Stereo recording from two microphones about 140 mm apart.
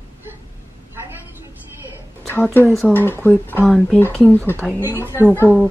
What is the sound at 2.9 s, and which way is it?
Speech, 15° left (ahead or behind).